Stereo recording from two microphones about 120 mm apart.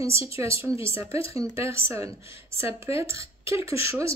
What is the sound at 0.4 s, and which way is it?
Speech, 25° right (ahead or behind).